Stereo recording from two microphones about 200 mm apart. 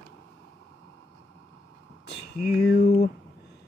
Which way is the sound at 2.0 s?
55° left (ahead or behind).